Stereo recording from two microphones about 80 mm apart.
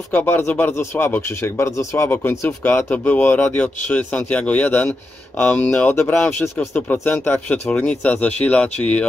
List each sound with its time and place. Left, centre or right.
0.1 s speech: left